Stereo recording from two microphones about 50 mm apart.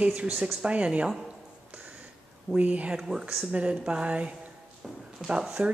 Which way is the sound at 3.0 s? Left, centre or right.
Centre.